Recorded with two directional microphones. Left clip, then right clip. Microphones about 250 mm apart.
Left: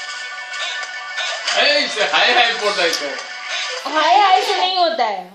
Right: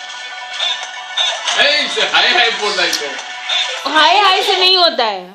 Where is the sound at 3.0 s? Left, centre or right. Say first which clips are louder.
Right 3 dB; centre.